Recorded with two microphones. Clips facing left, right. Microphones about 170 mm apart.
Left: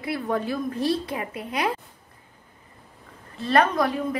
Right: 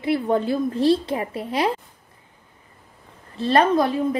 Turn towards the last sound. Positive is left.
turn(degrees=-30)  # may be behind; listen again after turning